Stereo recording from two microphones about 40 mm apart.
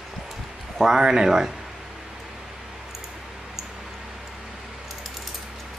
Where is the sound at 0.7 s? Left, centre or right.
Centre.